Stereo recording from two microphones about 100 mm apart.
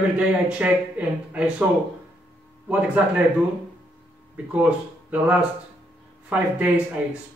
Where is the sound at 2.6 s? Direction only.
15° right (ahead or behind).